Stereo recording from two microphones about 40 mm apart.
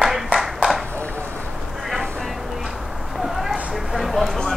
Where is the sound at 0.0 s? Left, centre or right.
Centre.